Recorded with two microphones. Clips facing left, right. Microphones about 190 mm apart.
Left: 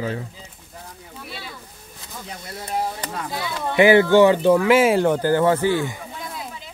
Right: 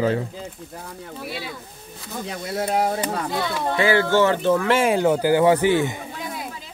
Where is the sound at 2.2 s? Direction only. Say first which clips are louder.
Right 8 dB; 90° right.